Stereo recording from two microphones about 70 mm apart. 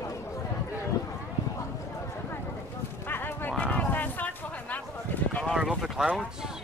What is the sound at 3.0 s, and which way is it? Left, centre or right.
Horse, left.